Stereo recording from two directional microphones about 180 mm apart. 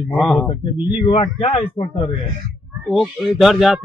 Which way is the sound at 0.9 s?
25° left (ahead or behind).